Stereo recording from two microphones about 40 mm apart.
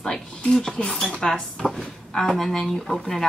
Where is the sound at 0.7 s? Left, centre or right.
Left.